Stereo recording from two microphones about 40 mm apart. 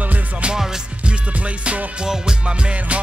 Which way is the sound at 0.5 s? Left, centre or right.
Centre.